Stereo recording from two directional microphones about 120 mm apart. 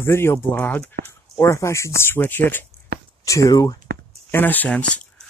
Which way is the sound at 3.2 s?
25° left (ahead or behind).